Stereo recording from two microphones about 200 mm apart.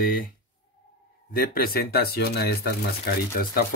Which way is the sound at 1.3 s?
50° left (ahead or behind).